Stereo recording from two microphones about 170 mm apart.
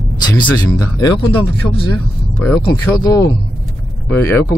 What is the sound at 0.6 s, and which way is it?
Speech, 25° left (ahead or behind).